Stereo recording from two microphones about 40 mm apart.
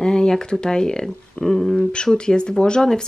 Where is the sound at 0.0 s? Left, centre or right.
Centre.